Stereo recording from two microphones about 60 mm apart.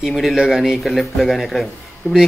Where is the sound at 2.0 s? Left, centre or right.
Left.